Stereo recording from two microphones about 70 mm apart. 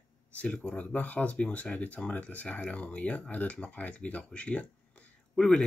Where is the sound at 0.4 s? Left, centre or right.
Centre.